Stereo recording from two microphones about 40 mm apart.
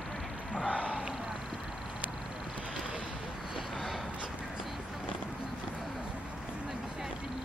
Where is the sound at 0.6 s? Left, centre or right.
Left.